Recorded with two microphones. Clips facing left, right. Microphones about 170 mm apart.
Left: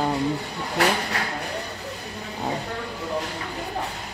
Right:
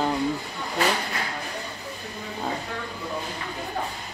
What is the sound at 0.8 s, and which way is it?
Speech, 75° left (ahead or behind).